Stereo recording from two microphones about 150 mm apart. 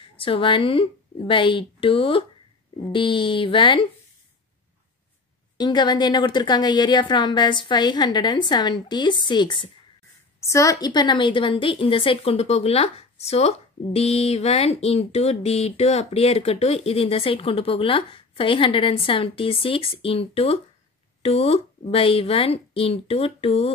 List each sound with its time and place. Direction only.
0.0 s a woman's voice: 35° left (ahead or behind)
5.6 s a woman's voice: 30° left (ahead or behind)
10.4 s a woman's voice: 20° left (ahead or behind); by 23.7 s 40° left (ahead or behind)